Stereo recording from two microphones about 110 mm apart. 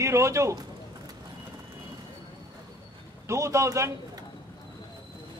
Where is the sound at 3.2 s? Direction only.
25° right (ahead or behind).